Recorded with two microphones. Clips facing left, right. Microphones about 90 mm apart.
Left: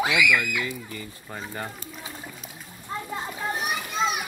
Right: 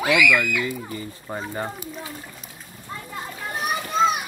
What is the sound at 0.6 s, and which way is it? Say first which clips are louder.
Speech: right 4 dB; 25° right (ahead or behind).